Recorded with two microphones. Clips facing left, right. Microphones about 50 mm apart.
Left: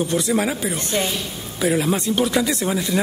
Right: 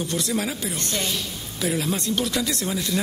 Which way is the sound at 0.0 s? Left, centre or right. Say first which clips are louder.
Left 6 dB; centre.